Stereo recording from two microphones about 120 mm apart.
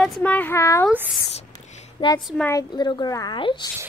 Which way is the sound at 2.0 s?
45° left (ahead or behind).